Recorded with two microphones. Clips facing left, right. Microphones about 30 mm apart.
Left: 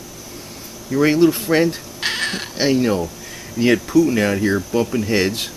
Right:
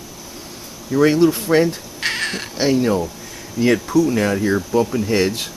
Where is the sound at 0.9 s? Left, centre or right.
Centre.